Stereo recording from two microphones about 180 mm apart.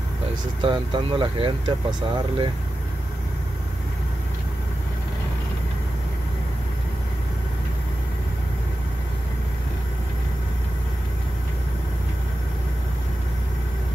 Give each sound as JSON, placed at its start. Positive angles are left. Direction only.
{"t": 0.6, "sound": "speech", "side_deg": -25}